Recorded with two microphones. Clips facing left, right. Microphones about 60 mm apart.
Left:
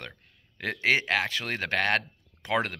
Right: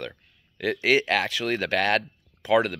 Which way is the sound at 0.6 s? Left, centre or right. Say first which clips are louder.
Right 4 dB; left.